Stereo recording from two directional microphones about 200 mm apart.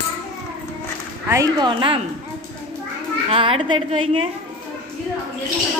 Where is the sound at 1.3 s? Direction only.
15° right (ahead or behind).